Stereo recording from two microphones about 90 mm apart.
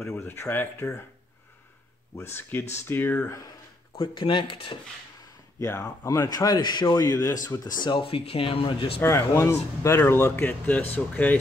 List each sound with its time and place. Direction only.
0.0 s speech: 30° left (ahead or behind)
2.1 s speech: 25° left (ahead or behind)
3.3 s speech: 40° left (ahead or behind)
3.9 s speech: 65° left (ahead or behind)
5.6 s speech: 40° left (ahead or behind); by 8.9 s 90° left
9.0 s speech: 30° left (ahead or behind)